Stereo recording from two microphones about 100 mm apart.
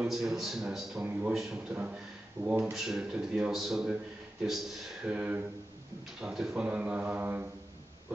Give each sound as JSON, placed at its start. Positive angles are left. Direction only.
{"t": 0.1, "sound": "a man's voice", "side_deg": -5}
{"t": 1.3, "sound": "a man's voice", "side_deg": -5}
{"t": 1.7, "sound": "a man's voice", "side_deg": -15}
{"t": 2.7, "sound": "a man's voice", "side_deg": -5}
{"t": 5.0, "sound": "a man's voice", "side_deg": -15}